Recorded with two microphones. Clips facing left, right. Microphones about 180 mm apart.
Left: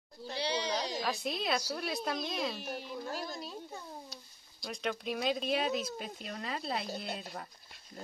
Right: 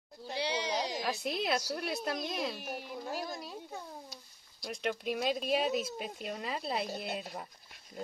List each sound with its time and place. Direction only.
0.3 s goat: 15° right (ahead or behind)
1.2 s a child's voice: centre (ahead or behind)